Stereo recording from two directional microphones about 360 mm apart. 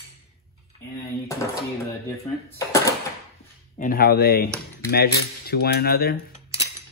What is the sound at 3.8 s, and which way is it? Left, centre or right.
Speech, left.